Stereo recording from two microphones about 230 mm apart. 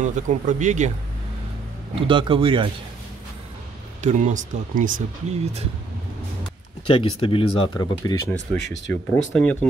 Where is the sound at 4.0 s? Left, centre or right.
Right.